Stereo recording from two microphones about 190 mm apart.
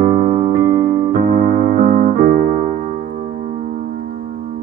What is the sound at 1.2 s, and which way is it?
Keyboard, 50° right (ahead or behind).